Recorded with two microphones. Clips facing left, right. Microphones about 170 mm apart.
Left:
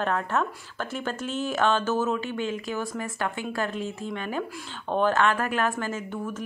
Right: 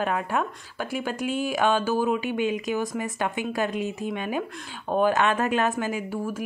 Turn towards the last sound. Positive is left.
turn(degrees=-10)  # may be behind; listen again after turning